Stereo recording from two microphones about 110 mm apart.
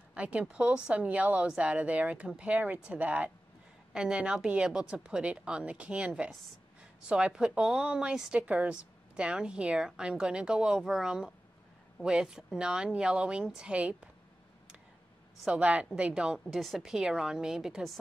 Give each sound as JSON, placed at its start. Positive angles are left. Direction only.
{"t": 0.1, "sound": "a woman's voice", "side_deg": -10}
{"t": 15.4, "sound": "a woman's voice", "side_deg": -10}